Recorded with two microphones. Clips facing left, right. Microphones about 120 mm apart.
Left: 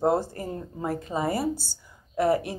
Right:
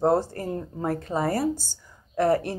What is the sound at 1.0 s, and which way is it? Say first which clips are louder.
Speech: right 1 dB; 50° right (ahead or behind).